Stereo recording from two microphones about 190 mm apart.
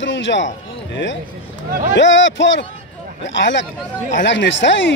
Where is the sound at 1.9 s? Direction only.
75° left (ahead or behind).